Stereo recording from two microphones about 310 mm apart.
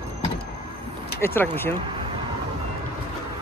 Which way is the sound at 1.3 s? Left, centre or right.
Centre.